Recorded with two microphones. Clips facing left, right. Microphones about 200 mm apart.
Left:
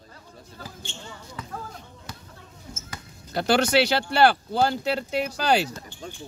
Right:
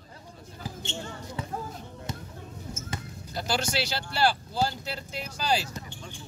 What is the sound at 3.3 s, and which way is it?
Speech, 65° left (ahead or behind).